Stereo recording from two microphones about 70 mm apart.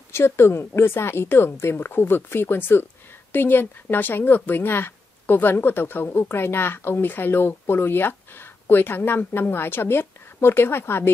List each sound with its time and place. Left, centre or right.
0.1 s speech: left